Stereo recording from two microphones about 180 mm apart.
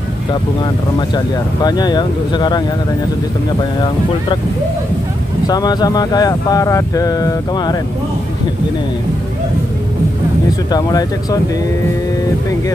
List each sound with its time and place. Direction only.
0.9 s speech: 25° left (ahead or behind)
5.5 s speech: 20° left (ahead or behind)
10.7 s speech: 20° left (ahead or behind)